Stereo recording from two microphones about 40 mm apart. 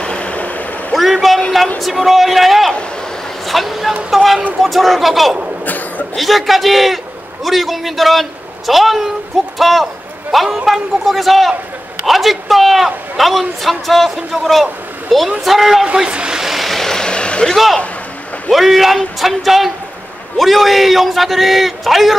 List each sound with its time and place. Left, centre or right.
0.0 s vehicle: left
0.9 s a sound: centre
1.8 s a man's voice: centre
5.7 s speech: left
6.1 s a man's voice: centre
15.8 s speech: right
16.3 s vehicle: centre; by 17.6 s left
18.5 s a man's voice: centre